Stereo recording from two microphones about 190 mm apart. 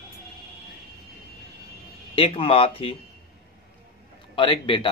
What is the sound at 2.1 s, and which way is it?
Speech, 30° left (ahead or behind).